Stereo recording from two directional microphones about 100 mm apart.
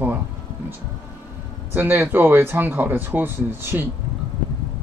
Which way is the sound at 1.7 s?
20° right (ahead or behind).